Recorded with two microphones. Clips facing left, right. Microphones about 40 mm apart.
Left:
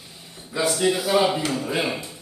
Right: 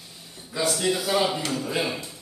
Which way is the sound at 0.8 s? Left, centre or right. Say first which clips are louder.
Left 5 dB; centre.